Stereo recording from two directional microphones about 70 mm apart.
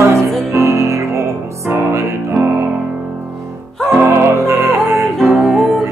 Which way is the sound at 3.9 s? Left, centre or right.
Right.